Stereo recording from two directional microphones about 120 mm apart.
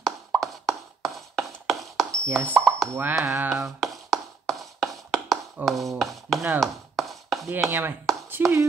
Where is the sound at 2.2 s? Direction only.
20° right (ahead or behind).